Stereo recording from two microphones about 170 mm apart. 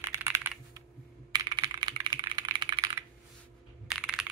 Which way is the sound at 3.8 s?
5° right (ahead or behind).